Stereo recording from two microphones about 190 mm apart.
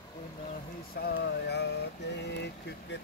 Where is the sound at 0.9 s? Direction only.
60° left (ahead or behind).